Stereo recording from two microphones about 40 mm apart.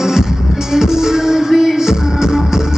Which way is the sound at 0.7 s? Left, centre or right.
Centre.